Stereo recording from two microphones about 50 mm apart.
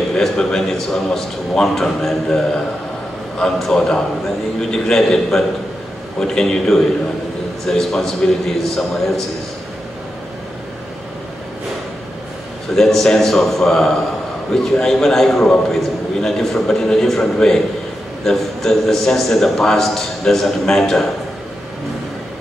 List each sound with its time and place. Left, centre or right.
0.2 s a man's voice: centre
12.7 s a man's voice: centre